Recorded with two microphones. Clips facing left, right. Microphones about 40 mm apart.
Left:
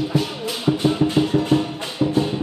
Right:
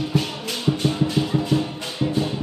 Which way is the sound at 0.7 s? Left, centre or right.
Left.